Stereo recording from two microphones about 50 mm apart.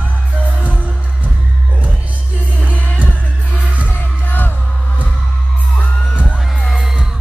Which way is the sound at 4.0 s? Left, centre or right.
Left.